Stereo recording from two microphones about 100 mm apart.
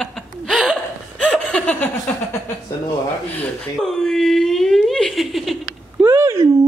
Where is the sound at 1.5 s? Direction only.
15° left (ahead or behind).